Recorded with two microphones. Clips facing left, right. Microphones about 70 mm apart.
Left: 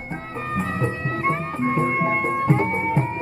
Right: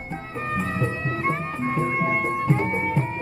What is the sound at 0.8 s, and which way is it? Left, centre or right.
Music, left.